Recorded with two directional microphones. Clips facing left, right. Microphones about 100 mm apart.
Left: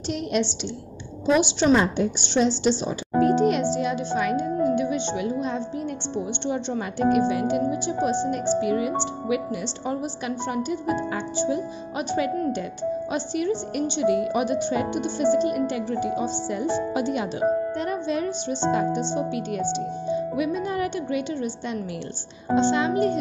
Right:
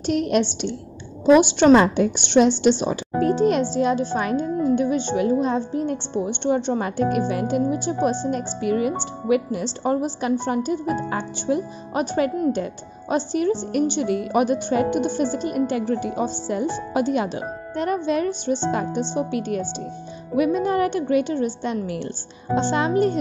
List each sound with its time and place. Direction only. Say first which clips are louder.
0.0 s a woman's voice: right 5 dB; 50° right (ahead or behind)
1.8 s a woman's voice: right 4 dB; 70° right (ahead or behind)
3.2 s a child's voice: even; 40° right (ahead or behind)
11.3 s a woman's voice: even; 60° right (ahead or behind); by 23.1 s 45° right (ahead or behind)